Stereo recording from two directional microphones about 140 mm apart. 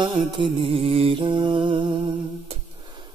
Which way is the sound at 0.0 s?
35° right (ahead or behind).